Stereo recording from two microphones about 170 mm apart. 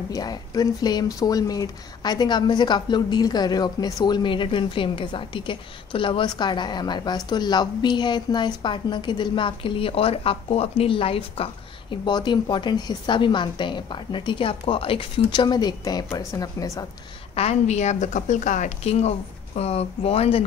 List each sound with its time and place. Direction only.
0.1 s speech: 20° left (ahead or behind)
17.4 s a woman's voice: 40° left (ahead or behind)